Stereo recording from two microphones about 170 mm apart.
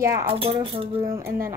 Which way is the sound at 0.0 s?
20° right (ahead or behind).